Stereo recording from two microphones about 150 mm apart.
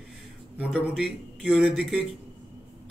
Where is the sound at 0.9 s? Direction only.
5° right (ahead or behind).